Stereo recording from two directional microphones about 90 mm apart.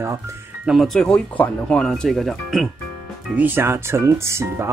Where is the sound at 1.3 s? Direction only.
15° left (ahead or behind).